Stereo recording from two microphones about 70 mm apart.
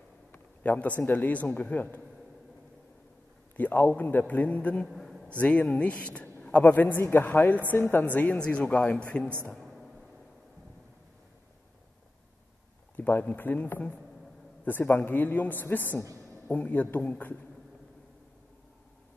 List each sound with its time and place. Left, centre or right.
0.3 s a man's voice: left
3.5 s a man's voice: left
4.8 s a sound: centre
5.4 s a man's voice: left
9.6 s a sound: centre
12.9 s a man's voice: left